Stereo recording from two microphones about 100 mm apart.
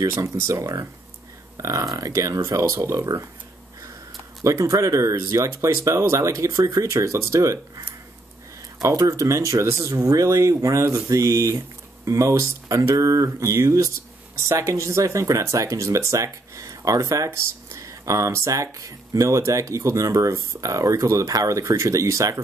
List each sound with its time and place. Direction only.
0.0 s speech: 30° right (ahead or behind)
4.4 s speech: 30° right (ahead or behind)
8.8 s speech: 35° right (ahead or behind)